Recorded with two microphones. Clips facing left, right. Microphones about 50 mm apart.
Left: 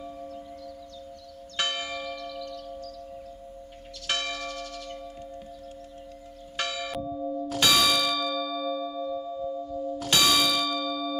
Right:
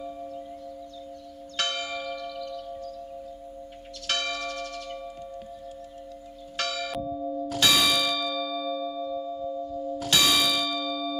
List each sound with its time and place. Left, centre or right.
1.6 s church bell: centre
2.1 s tubular bells: centre
4.1 s tubular bells: centre
6.5 s church bell: centre
7.5 s church bell: centre